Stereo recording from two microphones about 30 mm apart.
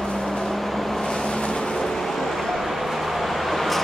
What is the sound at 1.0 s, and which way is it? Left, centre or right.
Vehicle, left.